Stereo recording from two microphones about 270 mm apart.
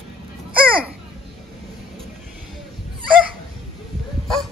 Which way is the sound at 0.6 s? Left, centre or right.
Centre.